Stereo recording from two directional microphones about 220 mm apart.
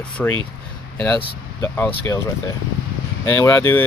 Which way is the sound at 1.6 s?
10° left (ahead or behind).